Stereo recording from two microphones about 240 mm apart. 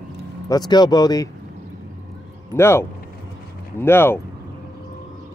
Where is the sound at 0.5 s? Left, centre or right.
Centre.